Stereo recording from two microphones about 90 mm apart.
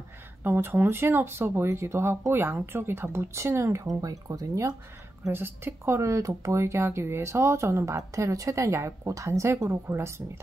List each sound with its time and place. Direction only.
0.4 s speech: 25° right (ahead or behind)
5.3 s speech: 25° right (ahead or behind)